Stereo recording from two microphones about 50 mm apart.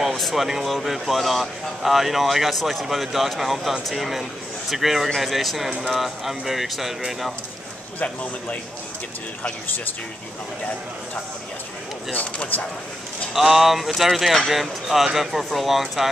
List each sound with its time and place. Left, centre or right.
0.0 s speech: centre
8.0 s a man's voice: left
12.1 s a man's voice: left
13.3 s speech: centre